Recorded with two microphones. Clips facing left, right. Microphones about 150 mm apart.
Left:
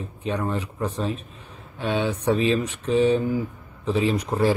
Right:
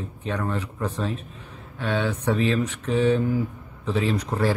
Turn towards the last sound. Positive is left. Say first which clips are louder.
# left 2 dB
turn(degrees=15)  # may be behind; listen again after turning